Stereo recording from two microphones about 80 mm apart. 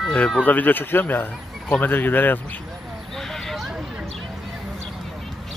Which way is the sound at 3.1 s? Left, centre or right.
Centre.